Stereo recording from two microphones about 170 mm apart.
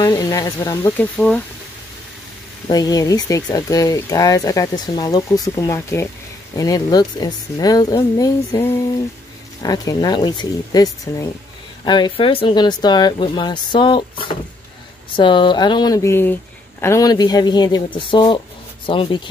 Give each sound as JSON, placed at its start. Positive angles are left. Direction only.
{"t": 0.0, "sound": "speech", "side_deg": 20}
{"t": 0.9, "sound": "speech", "side_deg": 10}
{"t": 2.7, "sound": "speech", "side_deg": 20}